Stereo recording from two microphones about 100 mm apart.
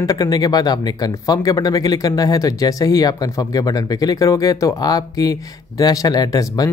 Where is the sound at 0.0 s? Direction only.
40° left (ahead or behind).